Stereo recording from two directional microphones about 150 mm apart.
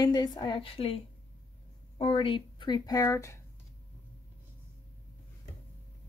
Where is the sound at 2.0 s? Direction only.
35° left (ahead or behind); by 3.3 s 20° left (ahead or behind).